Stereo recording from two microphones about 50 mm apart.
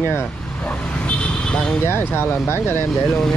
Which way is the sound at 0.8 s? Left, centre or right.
Left.